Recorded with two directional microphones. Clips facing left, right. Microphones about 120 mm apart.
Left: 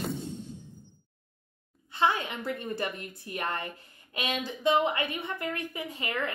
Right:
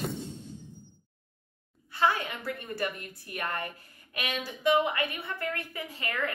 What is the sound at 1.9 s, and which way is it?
A woman's voice, 25° left (ahead or behind).